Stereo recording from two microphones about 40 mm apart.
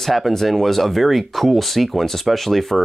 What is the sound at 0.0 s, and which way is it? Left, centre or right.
Speech, centre.